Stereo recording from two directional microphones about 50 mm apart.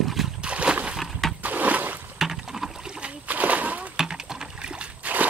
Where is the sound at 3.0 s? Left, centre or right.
Right.